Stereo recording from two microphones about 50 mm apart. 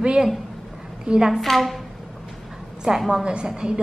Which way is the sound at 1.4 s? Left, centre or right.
Centre.